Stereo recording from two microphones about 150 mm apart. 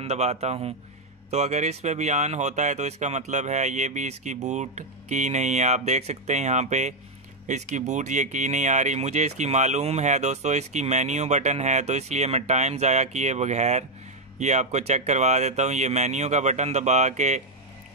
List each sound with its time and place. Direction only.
0.0 s speech: 45° right (ahead or behind)